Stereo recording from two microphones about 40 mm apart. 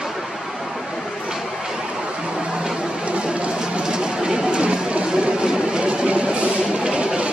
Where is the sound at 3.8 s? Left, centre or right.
Centre.